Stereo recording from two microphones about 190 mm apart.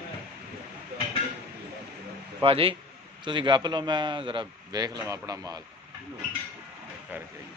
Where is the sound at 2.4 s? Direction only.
30° right (ahead or behind).